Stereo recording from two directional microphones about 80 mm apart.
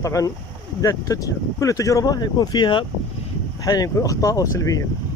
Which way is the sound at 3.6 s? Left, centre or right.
Left.